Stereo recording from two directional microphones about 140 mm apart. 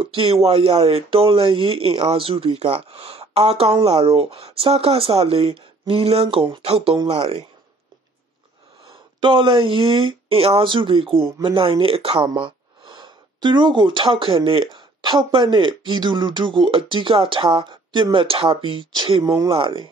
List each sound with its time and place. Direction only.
0.0 s speech: 40° right (ahead or behind)
8.8 s speech: 35° right (ahead or behind)
19.5 s speech: 40° right (ahead or behind)